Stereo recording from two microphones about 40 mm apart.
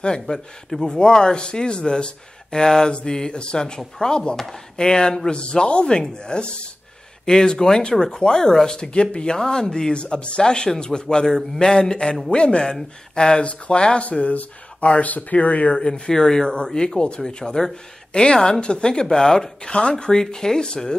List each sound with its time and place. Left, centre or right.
0.0 s speech: centre
14.0 s speech: left
15.9 s speech: centre